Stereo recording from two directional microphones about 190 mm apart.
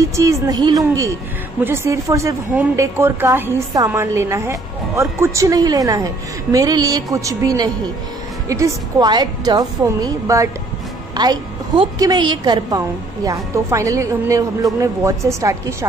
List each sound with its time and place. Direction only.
0.0 s a woman's voice: 15° right (ahead or behind)